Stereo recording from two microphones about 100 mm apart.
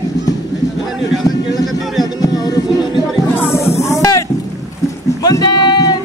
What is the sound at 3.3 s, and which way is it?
Music, 25° left (ahead or behind).